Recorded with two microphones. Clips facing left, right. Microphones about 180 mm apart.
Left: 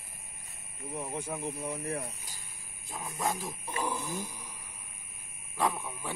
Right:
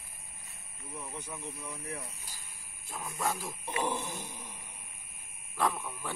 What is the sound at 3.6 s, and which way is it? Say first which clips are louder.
Speech: right 2 dB; 20° right (ahead or behind).